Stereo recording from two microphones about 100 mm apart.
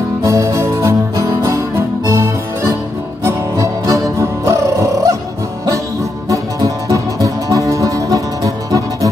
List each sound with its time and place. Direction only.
0.2 s music: 30° right (ahead or behind)
6.2 s music: 35° right (ahead or behind)